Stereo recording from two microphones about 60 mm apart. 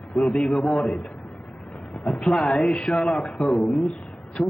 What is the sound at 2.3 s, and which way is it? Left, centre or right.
Speech, centre.